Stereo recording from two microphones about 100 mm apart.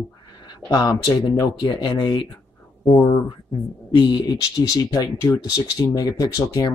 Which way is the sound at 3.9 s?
50° left (ahead or behind).